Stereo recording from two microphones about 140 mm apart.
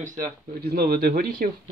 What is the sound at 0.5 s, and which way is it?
Speech, 90° right.